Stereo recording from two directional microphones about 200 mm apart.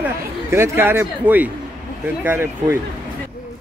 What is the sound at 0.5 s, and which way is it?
Speech, 10° right (ahead or behind).